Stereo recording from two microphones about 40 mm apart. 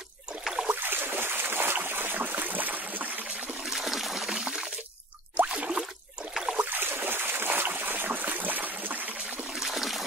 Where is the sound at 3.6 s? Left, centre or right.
Centre.